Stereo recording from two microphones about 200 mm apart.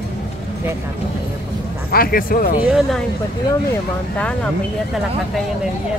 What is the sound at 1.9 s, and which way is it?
Speech, 45° left (ahead or behind).